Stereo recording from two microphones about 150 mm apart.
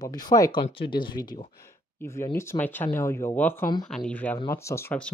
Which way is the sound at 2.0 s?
20° left (ahead or behind).